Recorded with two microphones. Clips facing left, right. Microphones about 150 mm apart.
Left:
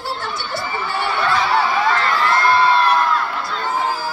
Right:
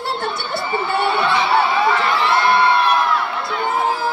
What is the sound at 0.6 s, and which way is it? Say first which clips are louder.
Speech: right 4 dB; 25° right (ahead or behind).